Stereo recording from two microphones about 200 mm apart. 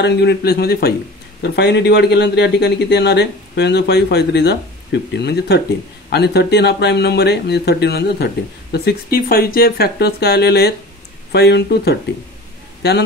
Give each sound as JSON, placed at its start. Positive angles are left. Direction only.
{"t": 0.0, "sound": "speech", "side_deg": 55}